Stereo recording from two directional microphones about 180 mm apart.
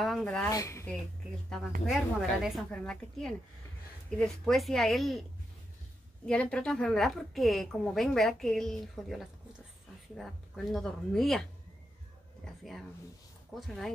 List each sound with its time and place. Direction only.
0.0 s speech: centre (ahead or behind)
0.5 s speech: 15° left (ahead or behind)
1.9 s a woman's voice: centre (ahead or behind)
6.2 s a woman's voice: 5° left (ahead or behind)
12.4 s a woman's voice: 5° left (ahead or behind)